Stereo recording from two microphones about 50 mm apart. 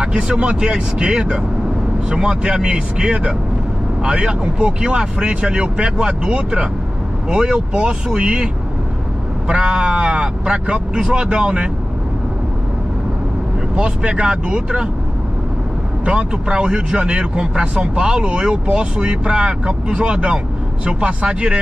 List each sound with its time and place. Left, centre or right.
0.0 s speech: centre
9.5 s speech: centre
13.7 s speech: centre
16.1 s speech: centre